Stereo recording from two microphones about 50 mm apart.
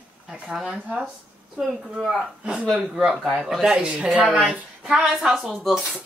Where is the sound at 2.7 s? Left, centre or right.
Right.